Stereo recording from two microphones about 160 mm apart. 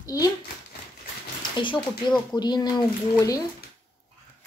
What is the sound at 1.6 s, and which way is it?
Speech, 30° left (ahead or behind).